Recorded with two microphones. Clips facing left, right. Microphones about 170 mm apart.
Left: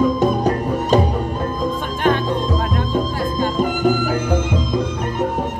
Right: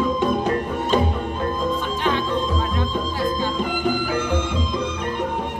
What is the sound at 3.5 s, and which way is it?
Music, 45° left (ahead or behind).